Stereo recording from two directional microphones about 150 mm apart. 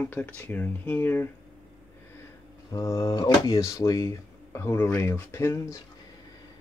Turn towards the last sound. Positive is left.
turn(degrees=20)  # may be behind; listen again after turning